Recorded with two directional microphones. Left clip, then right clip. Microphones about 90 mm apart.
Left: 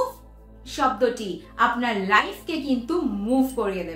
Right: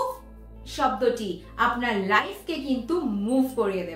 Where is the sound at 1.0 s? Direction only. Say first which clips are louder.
Left 1 dB; 20° left (ahead or behind).